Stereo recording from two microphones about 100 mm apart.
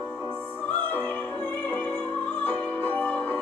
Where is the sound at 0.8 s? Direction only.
20° left (ahead or behind).